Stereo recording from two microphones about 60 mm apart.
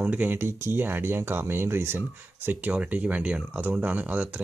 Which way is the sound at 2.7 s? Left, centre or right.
Right.